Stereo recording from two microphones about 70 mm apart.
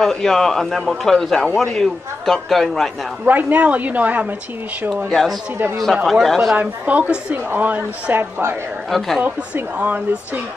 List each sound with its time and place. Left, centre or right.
0.0 s speech: centre
3.3 s a woman's voice: right
6.0 s speech: centre
6.5 s a woman's voice: centre
8.9 s speech: centre
9.8 s a woman's voice: right